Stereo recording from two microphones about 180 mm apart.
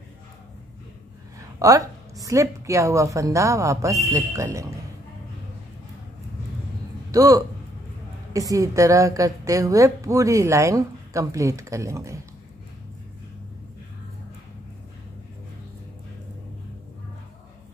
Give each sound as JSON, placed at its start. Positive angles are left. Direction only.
{"t": 1.6, "sound": "a woman's voice", "side_deg": -20}
{"t": 7.1, "sound": "a woman's voice", "side_deg": -20}